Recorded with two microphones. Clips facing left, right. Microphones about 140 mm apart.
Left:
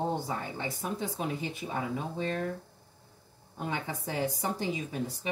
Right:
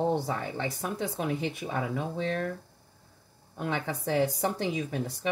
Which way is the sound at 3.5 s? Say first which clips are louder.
Right 3 dB; 75° right (ahead or behind).